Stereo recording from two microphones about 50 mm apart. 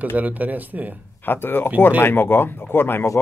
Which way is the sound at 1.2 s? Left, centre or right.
Left.